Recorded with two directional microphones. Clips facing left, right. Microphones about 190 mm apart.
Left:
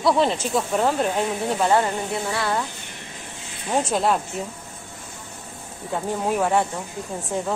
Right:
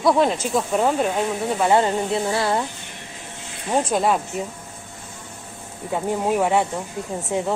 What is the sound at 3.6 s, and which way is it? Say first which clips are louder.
Speech: right 1 dB; 5° right (ahead or behind).